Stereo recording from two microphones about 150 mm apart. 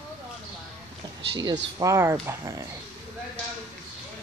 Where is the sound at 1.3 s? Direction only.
25° right (ahead or behind).